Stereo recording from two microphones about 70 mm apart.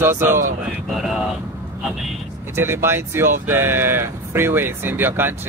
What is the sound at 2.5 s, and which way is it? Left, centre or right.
Speech, right.